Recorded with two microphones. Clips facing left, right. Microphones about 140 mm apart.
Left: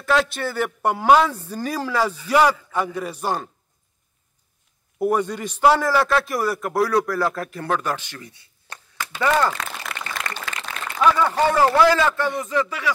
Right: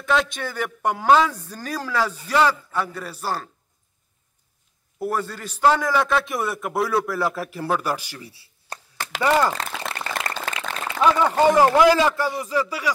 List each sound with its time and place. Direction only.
0.0 s a man's voice: 5° left (ahead or behind)
4.9 s a man's voice: 15° left (ahead or behind); by 8.0 s 10° right (ahead or behind)
8.2 s a sound: 30° right (ahead or behind)
11.0 s a man's voice: 20° right (ahead or behind)